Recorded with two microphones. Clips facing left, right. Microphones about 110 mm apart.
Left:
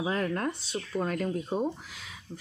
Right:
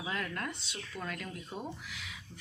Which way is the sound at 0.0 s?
35° left (ahead or behind).